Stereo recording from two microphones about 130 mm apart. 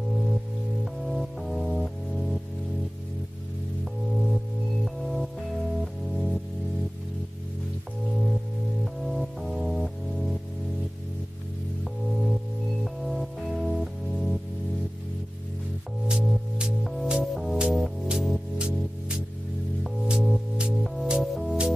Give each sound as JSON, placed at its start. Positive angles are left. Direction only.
{"t": 1.0, "sound": "music", "side_deg": 0}
{"t": 4.8, "sound": "music", "side_deg": 0}
{"t": 9.0, "sound": "music", "side_deg": 0}
{"t": 11.8, "sound": "music", "side_deg": 0}
{"t": 16.1, "sound": "music", "side_deg": -5}